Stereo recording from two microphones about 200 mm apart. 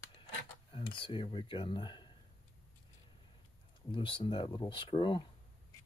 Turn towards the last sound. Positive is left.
turn(degrees=25)  # may be behind; listen again after turning